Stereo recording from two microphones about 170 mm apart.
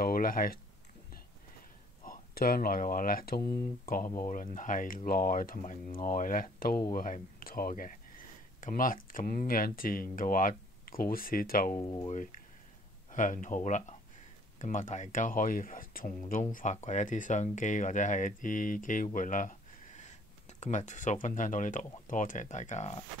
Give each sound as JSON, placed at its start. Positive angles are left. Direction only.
{"t": 0.0, "sound": "speech", "side_deg": 55}
{"t": 2.0, "sound": "speech", "side_deg": 60}
{"t": 11.7, "sound": "speech", "side_deg": 25}
{"t": 12.1, "sound": "speech", "side_deg": 45}
{"t": 16.5, "sound": "speech", "side_deg": 45}